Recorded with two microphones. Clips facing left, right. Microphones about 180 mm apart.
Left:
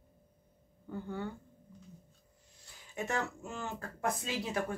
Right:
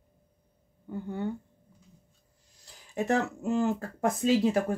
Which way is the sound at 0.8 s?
15° right (ahead or behind).